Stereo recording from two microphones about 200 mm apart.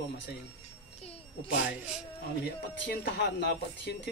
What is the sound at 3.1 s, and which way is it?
Speech, 60° left (ahead or behind).